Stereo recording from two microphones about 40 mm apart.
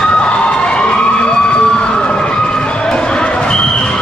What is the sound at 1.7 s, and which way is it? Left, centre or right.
Basketball bounce, left.